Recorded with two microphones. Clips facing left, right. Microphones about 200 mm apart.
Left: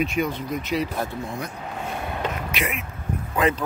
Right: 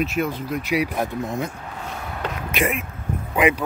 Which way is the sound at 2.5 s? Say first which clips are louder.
Right 5 dB; 50° right (ahead or behind).